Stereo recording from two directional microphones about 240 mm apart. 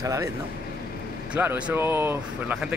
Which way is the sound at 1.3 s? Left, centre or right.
Centre.